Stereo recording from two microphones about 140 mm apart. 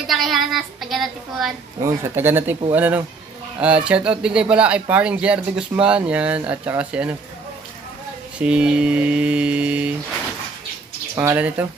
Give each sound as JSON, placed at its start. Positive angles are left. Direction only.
{"t": 0.0, "sound": "a woman's voice", "side_deg": 0}
{"t": 1.8, "sound": "speech", "side_deg": -20}
{"t": 8.4, "sound": "speech", "side_deg": -5}
{"t": 11.1, "sound": "speech", "side_deg": -15}